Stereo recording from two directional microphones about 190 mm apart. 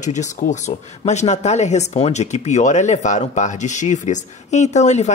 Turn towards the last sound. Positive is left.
turn(degrees=35)  # may be behind; listen again after turning